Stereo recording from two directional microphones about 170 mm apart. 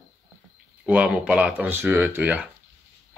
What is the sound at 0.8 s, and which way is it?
Speech, 5° right (ahead or behind).